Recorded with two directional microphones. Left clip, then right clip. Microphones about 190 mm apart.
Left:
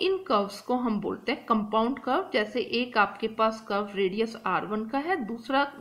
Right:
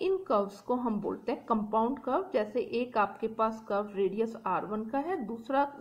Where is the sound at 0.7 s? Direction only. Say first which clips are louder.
Left 3 dB; 35° left (ahead or behind).